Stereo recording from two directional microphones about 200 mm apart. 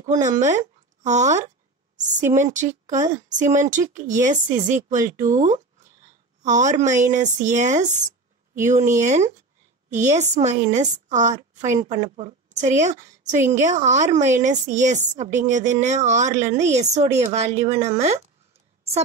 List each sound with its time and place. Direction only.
0.0 s a woman's voice: 40° right (ahead or behind)